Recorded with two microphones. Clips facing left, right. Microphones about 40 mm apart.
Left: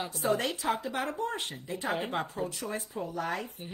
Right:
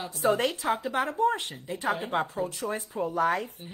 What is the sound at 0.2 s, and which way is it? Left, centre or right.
Speech, right.